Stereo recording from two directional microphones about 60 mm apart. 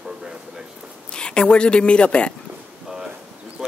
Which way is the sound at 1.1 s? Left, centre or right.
Centre.